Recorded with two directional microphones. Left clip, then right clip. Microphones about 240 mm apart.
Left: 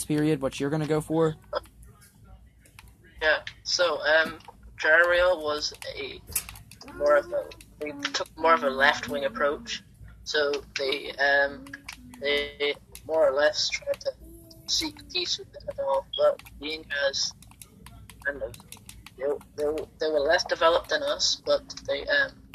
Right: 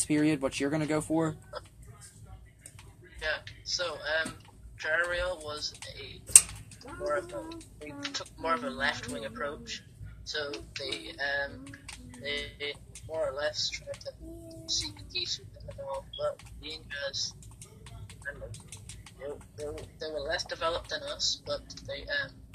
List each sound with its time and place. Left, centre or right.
0.0 s speech: left
3.2 s speech: left